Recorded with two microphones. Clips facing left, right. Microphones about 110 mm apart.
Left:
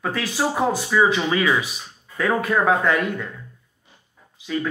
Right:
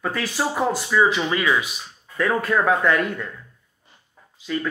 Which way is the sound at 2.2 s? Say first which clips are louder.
Even; 20° left (ahead or behind).